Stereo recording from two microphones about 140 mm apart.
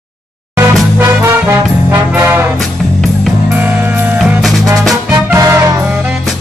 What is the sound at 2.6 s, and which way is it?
Music, centre (ahead or behind).